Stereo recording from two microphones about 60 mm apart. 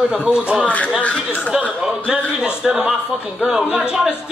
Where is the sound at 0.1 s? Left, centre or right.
Centre.